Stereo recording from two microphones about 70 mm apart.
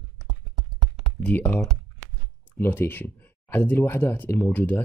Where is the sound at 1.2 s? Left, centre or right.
Left.